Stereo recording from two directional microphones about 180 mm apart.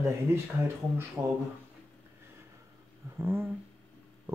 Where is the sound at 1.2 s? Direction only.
15° right (ahead or behind).